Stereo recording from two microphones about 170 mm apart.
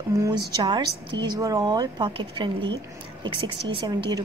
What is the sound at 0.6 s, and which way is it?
Speech, 25° right (ahead or behind).